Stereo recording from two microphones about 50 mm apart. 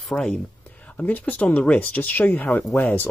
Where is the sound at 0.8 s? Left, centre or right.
Left.